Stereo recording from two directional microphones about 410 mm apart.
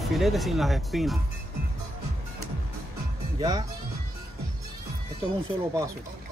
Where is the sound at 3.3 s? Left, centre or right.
Centre.